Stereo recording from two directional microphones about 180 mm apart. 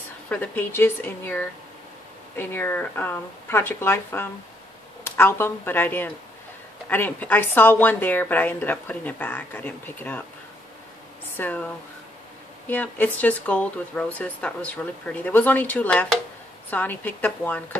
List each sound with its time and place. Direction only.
0.3 s speech: 10° left (ahead or behind)
11.3 s speech: 10° left (ahead or behind)
12.6 s speech: 10° left (ahead or behind)